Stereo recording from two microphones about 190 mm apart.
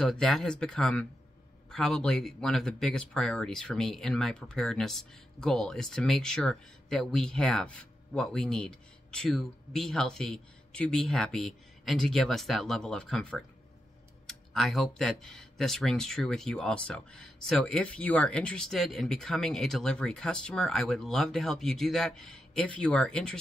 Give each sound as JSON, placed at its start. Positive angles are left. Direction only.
{"t": 0.0, "sound": "speech", "side_deg": 5}